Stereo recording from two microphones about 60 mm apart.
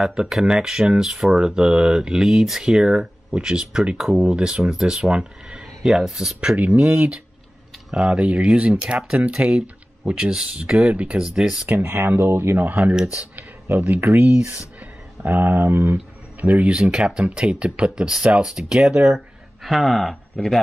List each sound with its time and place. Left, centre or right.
0.0 s speech: centre
5.8 s speech: centre
6.5 s speech: right
7.9 s speech: centre
11.2 s speech: centre
11.7 s speech: right
14.1 s speech: right
14.5 s speech: right
16.7 s speech: centre